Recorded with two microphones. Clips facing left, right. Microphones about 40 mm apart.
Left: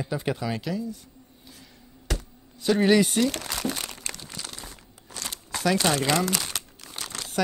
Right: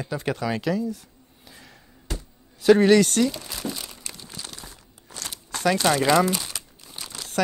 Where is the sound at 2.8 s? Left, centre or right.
Centre.